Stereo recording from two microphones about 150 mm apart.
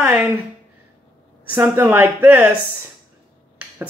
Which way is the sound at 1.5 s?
10° right (ahead or behind).